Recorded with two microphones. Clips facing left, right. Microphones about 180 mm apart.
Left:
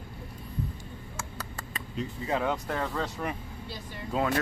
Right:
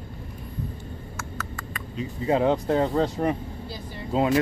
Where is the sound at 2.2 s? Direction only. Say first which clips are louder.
Right 9 dB; 30° right (ahead or behind).